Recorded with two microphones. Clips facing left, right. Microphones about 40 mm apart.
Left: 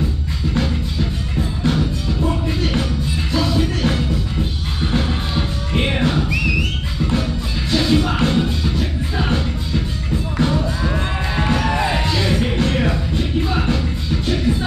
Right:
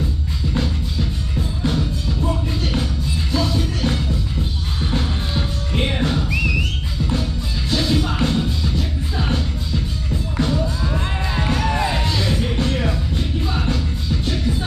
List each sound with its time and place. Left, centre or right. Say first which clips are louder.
1.6 s music: left 3 dB; left
3.4 s music: left 3 dB; centre
5.7 s music: left 2 dB; left
7.7 s music: left 3 dB; centre
10.3 s music: left 2 dB; centre
10.9 s music: left 2 dB; left; by 14.4 s centre